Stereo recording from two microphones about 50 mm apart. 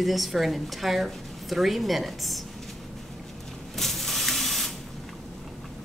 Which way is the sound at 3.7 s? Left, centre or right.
Centre.